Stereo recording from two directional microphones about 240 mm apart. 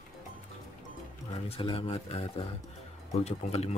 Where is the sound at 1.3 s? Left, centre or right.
Left.